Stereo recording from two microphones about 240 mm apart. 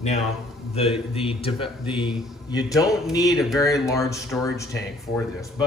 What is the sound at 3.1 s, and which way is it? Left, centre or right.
Speech, centre.